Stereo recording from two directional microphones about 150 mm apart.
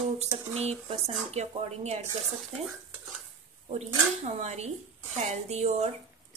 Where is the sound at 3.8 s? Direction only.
45° right (ahead or behind).